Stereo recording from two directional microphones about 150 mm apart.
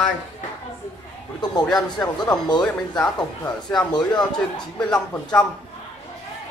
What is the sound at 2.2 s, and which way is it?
Speech, 30° left (ahead or behind).